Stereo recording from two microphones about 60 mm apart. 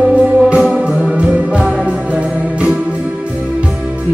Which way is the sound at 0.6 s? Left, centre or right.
Centre.